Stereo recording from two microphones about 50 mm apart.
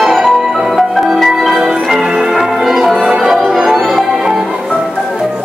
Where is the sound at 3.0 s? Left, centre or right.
Centre.